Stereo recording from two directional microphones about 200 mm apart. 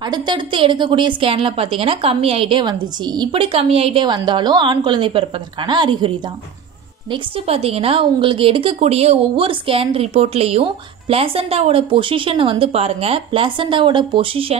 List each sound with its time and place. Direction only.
0.0 s a woman's voice: 20° right (ahead or behind)